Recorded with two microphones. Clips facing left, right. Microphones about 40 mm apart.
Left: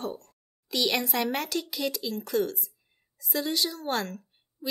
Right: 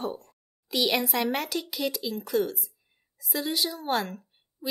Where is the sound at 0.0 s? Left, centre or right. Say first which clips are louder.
Right 2 dB; centre.